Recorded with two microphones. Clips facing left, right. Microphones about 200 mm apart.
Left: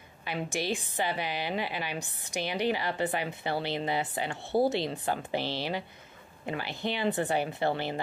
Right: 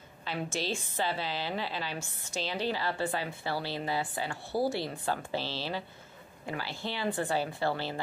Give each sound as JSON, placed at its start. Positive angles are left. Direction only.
{"t": 0.2, "sound": "a woman's voice", "side_deg": 15}